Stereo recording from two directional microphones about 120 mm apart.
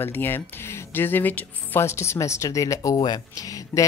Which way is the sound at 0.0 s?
20° left (ahead or behind).